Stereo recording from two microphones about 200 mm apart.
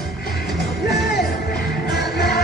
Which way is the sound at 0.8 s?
50° left (ahead or behind).